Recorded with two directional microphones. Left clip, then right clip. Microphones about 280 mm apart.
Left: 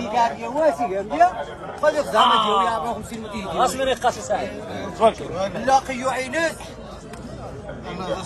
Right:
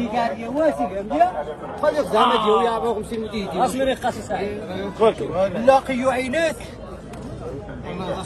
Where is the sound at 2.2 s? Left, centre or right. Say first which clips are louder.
Even; left.